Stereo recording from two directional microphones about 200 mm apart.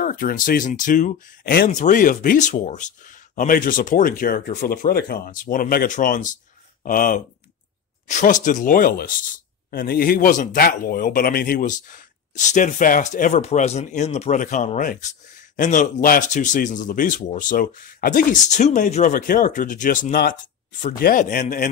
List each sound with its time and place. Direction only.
0.0 s a man's voice: 45° left (ahead or behind)